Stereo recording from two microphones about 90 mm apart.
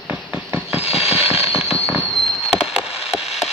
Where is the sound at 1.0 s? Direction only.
5° right (ahead or behind).